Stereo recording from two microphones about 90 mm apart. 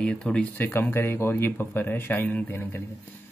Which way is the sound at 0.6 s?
25° left (ahead or behind).